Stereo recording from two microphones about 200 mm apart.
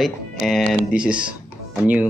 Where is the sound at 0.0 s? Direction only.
Centre (ahead or behind).